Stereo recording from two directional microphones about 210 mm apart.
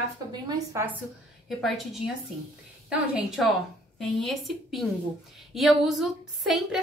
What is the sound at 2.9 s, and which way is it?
A woman's voice, 5° right (ahead or behind).